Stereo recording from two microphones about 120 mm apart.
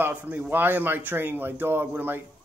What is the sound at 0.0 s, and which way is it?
Speech, 15° right (ahead or behind).